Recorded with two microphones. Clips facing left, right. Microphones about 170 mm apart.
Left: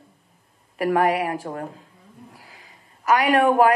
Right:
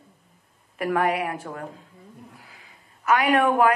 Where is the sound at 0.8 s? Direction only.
35° left (ahead or behind).